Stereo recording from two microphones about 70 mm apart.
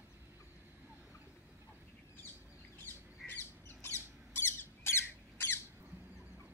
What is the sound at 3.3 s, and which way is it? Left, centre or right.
Squawk, left.